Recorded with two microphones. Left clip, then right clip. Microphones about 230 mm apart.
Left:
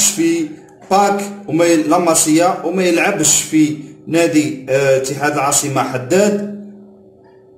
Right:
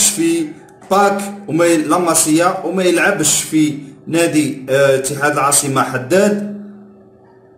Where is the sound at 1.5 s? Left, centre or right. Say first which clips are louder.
Left 1 dB; centre.